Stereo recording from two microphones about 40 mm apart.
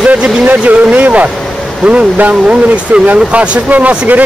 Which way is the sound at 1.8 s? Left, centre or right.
Right.